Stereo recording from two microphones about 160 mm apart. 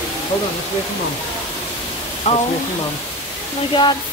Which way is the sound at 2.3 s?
40° left (ahead or behind).